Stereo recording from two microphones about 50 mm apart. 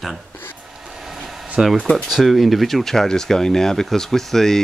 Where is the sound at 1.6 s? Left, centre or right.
Centre.